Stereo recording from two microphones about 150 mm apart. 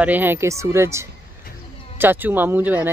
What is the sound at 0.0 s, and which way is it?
Speech, 10° right (ahead or behind).